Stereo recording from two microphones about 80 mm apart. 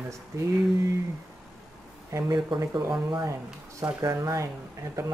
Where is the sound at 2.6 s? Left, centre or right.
Right.